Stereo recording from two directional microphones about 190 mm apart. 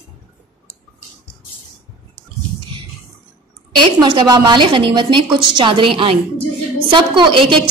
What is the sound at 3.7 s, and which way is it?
A woman's voice, 20° right (ahead or behind).